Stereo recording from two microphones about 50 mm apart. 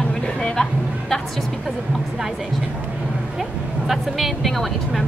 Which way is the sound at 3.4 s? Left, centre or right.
Centre.